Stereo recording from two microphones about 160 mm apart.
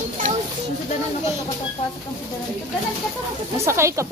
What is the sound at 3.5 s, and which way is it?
Speech, 15° right (ahead or behind).